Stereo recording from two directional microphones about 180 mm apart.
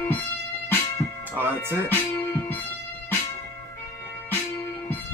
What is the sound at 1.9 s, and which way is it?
Music, 10° left (ahead or behind).